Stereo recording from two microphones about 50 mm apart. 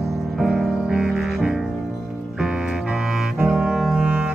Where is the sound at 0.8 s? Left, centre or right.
Centre.